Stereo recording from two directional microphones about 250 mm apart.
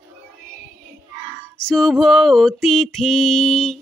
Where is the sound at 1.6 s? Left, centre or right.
Centre.